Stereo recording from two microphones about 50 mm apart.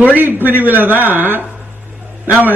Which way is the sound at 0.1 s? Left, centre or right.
Right.